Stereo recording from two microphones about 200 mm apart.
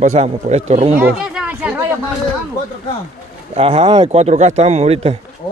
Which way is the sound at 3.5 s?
25° right (ahead or behind).